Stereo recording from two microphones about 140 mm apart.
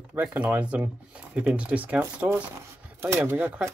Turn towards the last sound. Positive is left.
turn(degrees=-15)  # may be behind; listen again after turning